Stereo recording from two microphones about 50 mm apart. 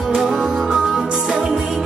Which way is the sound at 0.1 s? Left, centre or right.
Centre.